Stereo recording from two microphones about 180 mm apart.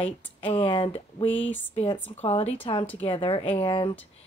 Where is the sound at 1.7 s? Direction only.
30° left (ahead or behind).